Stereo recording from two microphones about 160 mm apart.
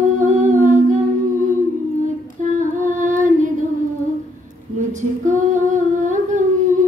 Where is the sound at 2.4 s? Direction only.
50° right (ahead or behind).